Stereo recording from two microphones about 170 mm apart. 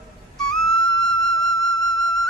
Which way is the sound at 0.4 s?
5° left (ahead or behind).